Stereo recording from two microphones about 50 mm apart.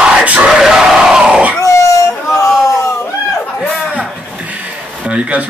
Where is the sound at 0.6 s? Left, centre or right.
Centre.